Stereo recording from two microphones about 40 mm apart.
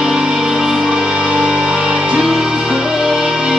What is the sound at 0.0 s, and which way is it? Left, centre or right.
Music, centre.